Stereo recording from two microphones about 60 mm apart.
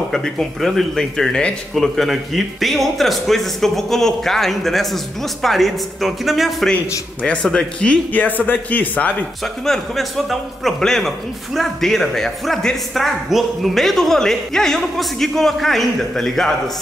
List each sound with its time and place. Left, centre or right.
0.1 s speech: centre
2.0 s a man's voice: centre
7.4 s speech: centre
8.1 s speech: left
9.4 s a man's voice: centre